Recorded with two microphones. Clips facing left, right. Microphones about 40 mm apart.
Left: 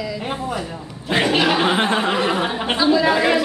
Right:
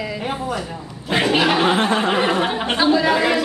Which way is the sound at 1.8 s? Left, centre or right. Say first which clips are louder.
Even; centre.